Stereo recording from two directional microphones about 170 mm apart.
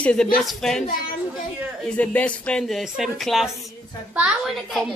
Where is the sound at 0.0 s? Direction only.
5° left (ahead or behind).